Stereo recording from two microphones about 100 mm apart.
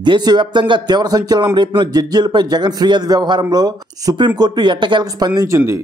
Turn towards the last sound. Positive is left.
turn(degrees=-40)  # may be behind; listen again after turning